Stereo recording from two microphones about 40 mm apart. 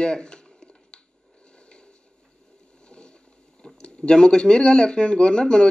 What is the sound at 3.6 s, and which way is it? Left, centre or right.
Speech, left.